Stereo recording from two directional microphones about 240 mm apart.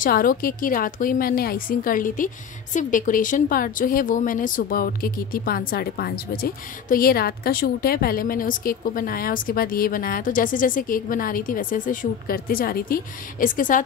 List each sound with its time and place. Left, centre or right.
0.0 s a woman's voice: left